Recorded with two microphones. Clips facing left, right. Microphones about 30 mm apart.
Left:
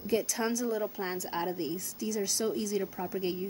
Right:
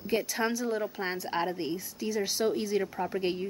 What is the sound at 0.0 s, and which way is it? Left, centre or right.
A woman's voice, right.